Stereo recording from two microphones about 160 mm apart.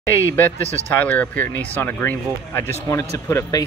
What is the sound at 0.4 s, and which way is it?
Speech, 10° left (ahead or behind).